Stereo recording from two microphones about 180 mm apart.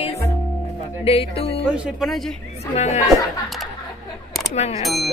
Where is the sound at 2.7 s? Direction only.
40° left (ahead or behind).